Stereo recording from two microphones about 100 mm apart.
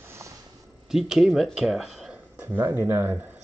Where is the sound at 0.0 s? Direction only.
25° right (ahead or behind).